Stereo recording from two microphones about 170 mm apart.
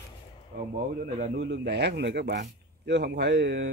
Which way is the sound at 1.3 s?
90° right.